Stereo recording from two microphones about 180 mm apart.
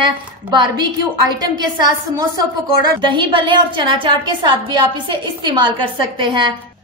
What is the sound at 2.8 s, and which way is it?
A woman's voice, 25° right (ahead or behind).